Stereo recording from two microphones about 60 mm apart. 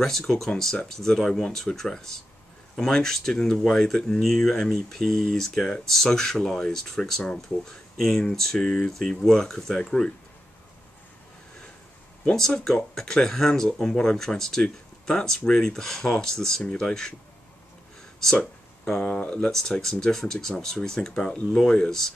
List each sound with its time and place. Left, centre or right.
0.0 s speech: centre
12.3 s speech: centre
18.2 s speech: centre
19.5 s speech: centre